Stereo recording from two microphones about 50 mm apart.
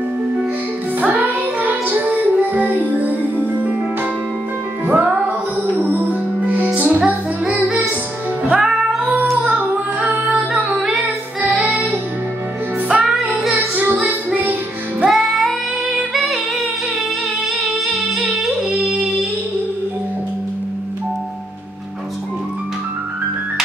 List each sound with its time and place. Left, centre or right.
1.0 s music: right
4.8 s music: right
5.8 s music: right
8.5 s music: centre
10.2 s music: centre
11.6 s music: centre
13.0 s music: centre
14.3 s music: right
15.0 s child singing: centre
16.1 s music: centre
17.8 s music: centre